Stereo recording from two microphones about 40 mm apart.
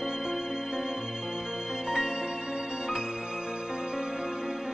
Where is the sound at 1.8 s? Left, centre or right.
Centre.